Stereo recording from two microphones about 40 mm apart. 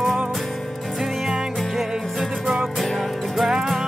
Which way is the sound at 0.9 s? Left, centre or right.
Centre.